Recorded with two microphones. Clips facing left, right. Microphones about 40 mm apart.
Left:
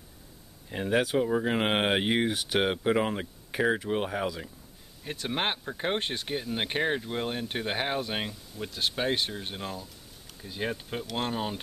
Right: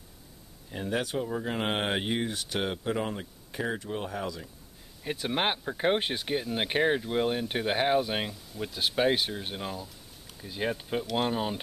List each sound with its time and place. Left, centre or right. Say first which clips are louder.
0.7 s speech: left 4 dB; left
5.0 s speech: right 2 dB; centre